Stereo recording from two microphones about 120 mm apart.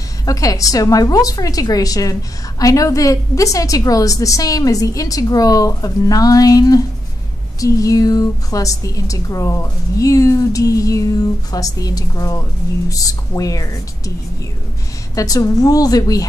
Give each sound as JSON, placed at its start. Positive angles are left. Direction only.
{"t": 0.2, "sound": "a woman's voice", "side_deg": 30}
{"t": 15.1, "sound": "a woman's voice", "side_deg": 30}